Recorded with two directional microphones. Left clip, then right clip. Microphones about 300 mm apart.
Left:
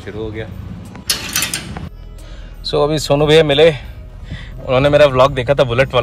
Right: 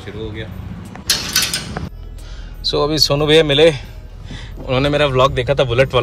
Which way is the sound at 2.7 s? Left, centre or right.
Centre.